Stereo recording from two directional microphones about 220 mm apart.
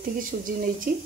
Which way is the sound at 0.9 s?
40° right (ahead or behind).